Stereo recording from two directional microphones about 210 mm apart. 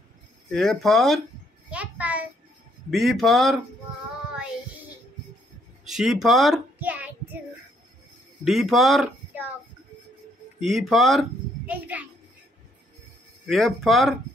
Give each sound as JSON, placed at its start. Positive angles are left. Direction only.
{"t": 0.5, "sound": "speech", "side_deg": 0}
{"t": 1.7, "sound": "a sound", "side_deg": -5}
{"t": 2.9, "sound": "speech", "side_deg": 0}
{"t": 5.9, "sound": "speech", "side_deg": 0}
{"t": 8.5, "sound": "speech", "side_deg": 0}
{"t": 10.6, "sound": "a child's voice", "side_deg": 0}
{"t": 13.5, "sound": "speech", "side_deg": 0}